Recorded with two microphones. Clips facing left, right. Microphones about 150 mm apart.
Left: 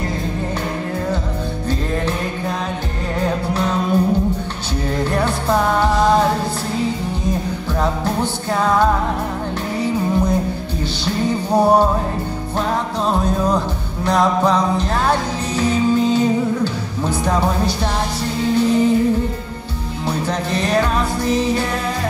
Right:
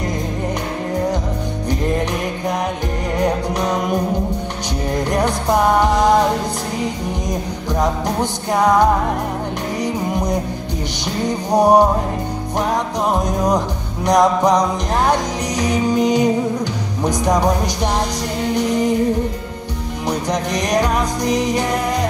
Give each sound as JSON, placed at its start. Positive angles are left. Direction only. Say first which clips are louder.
{"t": 3.2, "sound": "music", "louder": "right 1 dB", "side_deg": -15}
{"t": 7.8, "sound": "music", "louder": "right 1 dB", "side_deg": -15}
{"t": 20.1, "sound": "music", "louder": "right 1 dB", "side_deg": -15}